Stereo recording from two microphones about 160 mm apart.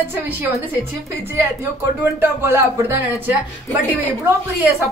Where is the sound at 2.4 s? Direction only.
15° right (ahead or behind).